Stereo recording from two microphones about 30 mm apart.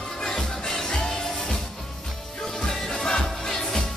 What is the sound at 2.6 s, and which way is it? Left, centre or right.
Music, left.